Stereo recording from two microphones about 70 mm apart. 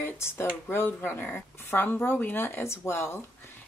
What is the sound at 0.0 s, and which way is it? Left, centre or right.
Speech, left.